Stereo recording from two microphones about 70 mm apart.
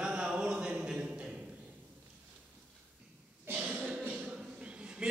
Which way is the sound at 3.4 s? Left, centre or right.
Right.